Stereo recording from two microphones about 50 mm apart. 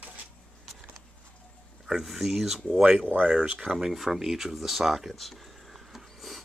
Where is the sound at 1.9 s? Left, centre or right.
Centre.